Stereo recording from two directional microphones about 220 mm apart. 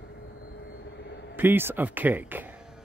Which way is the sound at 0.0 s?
50° left (ahead or behind).